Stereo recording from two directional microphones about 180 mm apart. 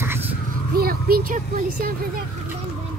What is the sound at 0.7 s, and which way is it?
Speech, 55° right (ahead or behind).